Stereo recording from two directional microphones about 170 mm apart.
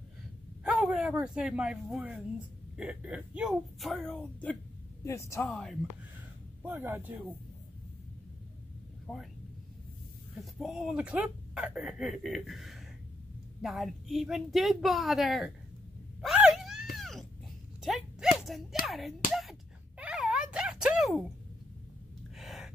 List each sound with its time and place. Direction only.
0.7 s speech: 5° right (ahead or behind)
5.0 s speech: 15° left (ahead or behind)
5.5 s speech: centre (ahead or behind)
6.6 s speech: 10° right (ahead or behind)
9.0 s speech: centre (ahead or behind)
10.4 s speech: centre (ahead or behind)
16.2 s a sound: 5° right (ahead or behind)
18.9 s speech: centre (ahead or behind)
20.0 s a sound: 5° right (ahead or behind)
22.4 s a sound: centre (ahead or behind)